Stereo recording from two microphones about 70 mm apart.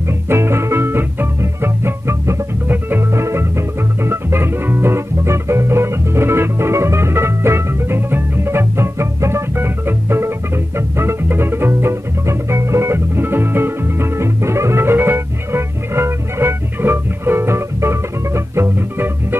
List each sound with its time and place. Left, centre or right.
0.1 s music: right